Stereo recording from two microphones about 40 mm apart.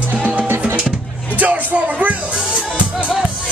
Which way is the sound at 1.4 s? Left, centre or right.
Right.